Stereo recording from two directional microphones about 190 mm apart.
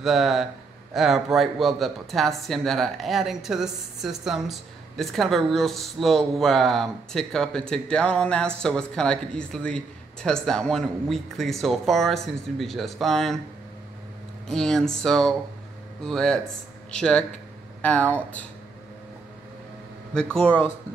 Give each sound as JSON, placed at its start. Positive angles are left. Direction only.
{"t": 0.0, "sound": "speech", "side_deg": 0}
{"t": 14.5, "sound": "speech", "side_deg": 0}